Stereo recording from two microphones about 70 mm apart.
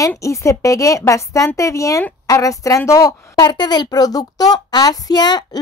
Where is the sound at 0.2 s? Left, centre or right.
Left.